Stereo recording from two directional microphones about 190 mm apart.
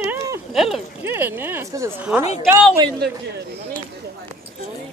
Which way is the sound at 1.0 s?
10° right (ahead or behind).